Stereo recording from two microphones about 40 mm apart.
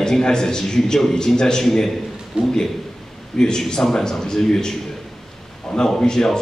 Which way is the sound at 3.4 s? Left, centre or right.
Centre.